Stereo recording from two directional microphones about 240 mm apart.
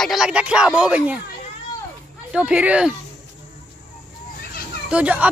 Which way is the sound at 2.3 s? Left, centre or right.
Centre.